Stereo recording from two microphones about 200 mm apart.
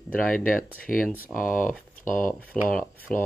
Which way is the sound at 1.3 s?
Centre (ahead or behind).